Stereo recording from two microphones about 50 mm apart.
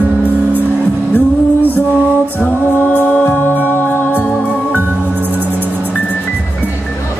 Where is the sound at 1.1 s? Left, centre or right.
Left.